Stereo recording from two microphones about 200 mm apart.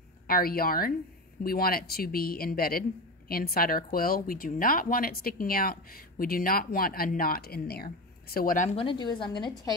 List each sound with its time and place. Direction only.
0.3 s speech: 50° left (ahead or behind)
8.7 s a woman's voice: 25° left (ahead or behind)